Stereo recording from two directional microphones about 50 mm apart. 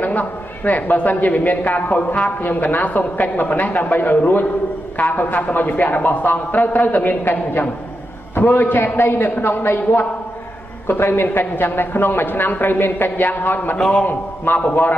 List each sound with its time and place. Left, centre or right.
0.0 s a woman's voice: left
13.7 s a man's voice: centre
14.5 s a woman's voice: left